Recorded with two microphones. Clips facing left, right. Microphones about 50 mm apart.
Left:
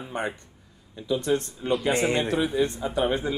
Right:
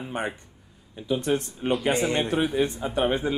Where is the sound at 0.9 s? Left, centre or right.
Right.